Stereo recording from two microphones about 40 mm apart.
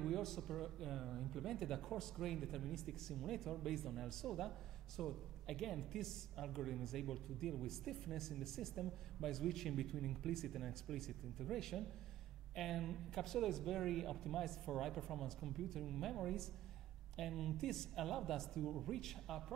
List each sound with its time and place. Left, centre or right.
0.0 s speech: centre